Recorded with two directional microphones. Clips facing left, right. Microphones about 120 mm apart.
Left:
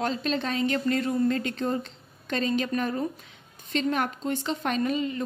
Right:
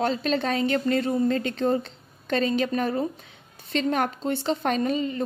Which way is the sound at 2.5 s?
35° right (ahead or behind).